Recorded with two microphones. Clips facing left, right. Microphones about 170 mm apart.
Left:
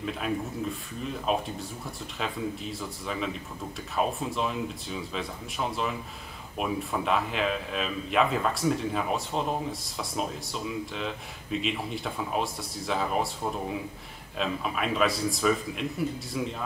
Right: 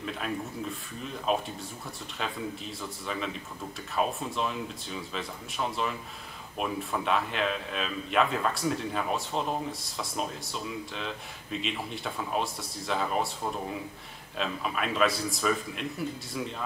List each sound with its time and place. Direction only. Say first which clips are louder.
0.0 s speech: left 3 dB; centre (ahead or behind)